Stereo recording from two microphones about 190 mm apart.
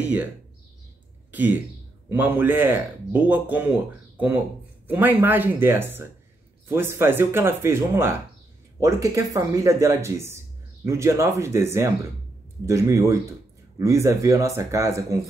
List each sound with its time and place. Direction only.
0.0 s speech: 10° right (ahead or behind)
1.3 s speech: 10° right (ahead or behind)